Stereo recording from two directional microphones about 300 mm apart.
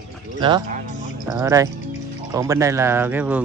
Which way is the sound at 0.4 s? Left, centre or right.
Centre.